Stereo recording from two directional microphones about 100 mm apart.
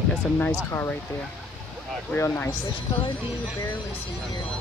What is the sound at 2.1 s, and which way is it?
Speech, 25° left (ahead or behind).